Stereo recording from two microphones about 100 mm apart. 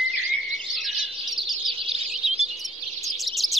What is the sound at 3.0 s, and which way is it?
Bird, centre (ahead or behind).